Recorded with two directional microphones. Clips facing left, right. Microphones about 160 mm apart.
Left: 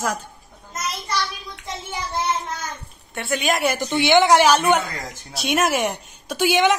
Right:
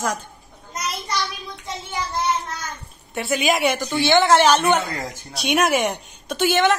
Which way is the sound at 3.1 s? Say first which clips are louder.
Right 2 dB; centre (ahead or behind).